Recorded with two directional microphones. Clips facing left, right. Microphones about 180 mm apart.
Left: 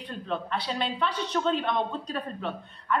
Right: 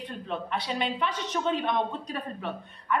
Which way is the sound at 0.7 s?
15° right (ahead or behind).